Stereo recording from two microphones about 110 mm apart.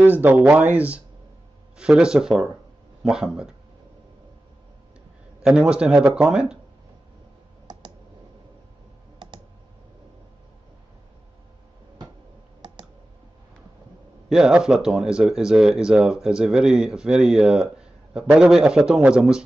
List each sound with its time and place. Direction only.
0.0 s speech: 15° right (ahead or behind)
5.4 s speech: 10° right (ahead or behind)
12.6 s clicking: 40° right (ahead or behind)
14.3 s speech: 5° right (ahead or behind)